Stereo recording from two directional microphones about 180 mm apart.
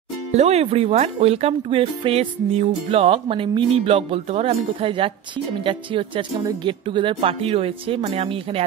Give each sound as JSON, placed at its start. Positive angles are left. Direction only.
{"t": 0.3, "sound": "speech", "side_deg": -35}